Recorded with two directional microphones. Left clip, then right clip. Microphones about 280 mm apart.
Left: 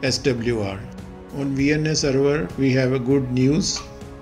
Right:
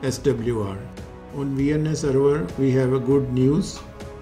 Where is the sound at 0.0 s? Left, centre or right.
Centre.